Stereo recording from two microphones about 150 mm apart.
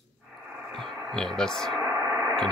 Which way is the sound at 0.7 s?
Centre (ahead or behind).